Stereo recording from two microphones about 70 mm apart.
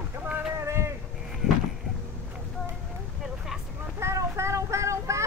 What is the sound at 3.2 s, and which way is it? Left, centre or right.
Vehicle, centre.